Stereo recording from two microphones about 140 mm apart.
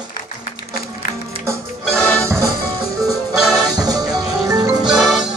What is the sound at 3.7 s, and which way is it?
Music, 25° right (ahead or behind).